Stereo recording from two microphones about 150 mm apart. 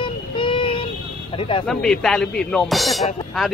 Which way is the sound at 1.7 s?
5° left (ahead or behind).